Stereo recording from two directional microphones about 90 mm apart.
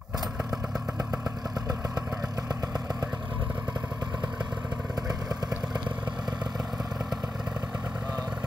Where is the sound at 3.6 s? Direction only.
55° right (ahead or behind).